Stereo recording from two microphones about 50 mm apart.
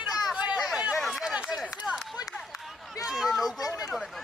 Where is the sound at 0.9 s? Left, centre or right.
Centre.